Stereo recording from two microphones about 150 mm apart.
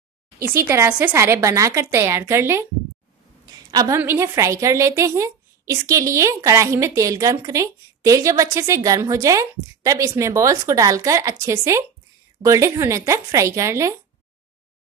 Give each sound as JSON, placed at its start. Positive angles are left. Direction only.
{"t": 0.4, "sound": "a woman's voice", "side_deg": -20}